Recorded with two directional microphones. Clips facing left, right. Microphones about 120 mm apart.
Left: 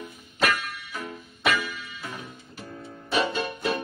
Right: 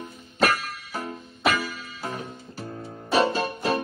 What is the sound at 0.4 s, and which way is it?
Music, 35° right (ahead or behind).